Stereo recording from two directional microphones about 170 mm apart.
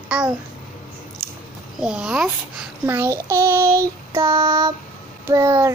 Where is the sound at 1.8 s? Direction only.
5° right (ahead or behind).